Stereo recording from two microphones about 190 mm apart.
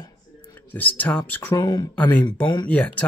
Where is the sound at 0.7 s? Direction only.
10° left (ahead or behind).